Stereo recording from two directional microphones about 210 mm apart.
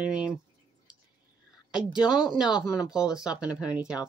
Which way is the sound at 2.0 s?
5° right (ahead or behind).